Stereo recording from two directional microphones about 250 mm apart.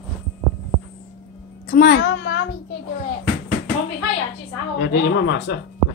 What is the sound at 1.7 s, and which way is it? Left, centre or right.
Speech, left.